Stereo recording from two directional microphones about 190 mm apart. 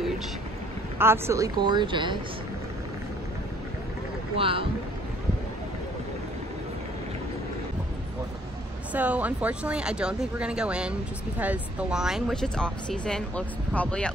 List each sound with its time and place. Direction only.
0.9 s speech: 10° right (ahead or behind)
4.4 s speech: 30° right (ahead or behind)
8.9 s speech: 10° right (ahead or behind)